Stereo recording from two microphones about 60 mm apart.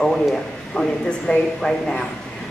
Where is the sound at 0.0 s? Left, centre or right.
Centre.